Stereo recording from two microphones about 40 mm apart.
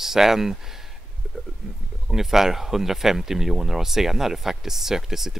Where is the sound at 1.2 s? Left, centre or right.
Right.